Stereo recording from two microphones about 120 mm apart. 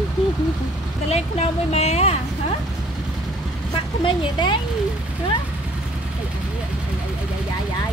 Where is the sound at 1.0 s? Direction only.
60° left (ahead or behind).